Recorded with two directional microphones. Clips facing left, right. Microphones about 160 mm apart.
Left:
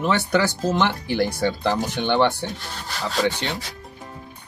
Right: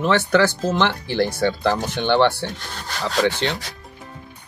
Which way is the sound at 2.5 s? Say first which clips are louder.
Right 1 dB; centre (ahead or behind).